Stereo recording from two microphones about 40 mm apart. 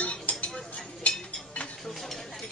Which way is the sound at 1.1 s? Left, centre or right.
Left.